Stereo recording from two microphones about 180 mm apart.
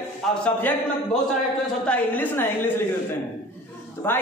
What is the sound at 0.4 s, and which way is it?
Speech, 10° left (ahead or behind).